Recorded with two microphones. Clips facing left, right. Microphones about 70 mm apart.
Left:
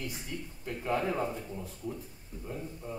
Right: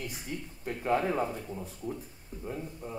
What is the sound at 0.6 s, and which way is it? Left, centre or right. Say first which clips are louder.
Speech: right 3 dB; right.